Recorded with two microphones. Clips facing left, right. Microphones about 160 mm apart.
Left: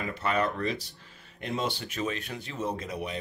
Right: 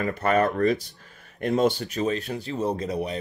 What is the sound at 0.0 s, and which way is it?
Speech, 50° right (ahead or behind).